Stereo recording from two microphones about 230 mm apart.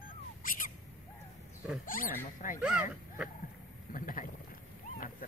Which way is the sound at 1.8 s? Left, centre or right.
Left.